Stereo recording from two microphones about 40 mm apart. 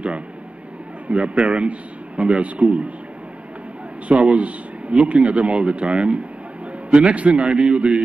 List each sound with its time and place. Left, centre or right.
1.0 s a man's voice: right
4.1 s a man's voice: right